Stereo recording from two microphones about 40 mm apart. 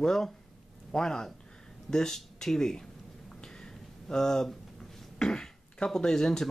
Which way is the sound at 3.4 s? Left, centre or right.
Centre.